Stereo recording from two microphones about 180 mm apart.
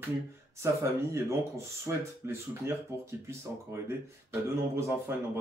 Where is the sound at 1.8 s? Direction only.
15° right (ahead or behind).